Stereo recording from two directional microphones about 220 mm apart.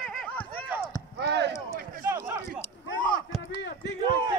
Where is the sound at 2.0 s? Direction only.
10° right (ahead or behind).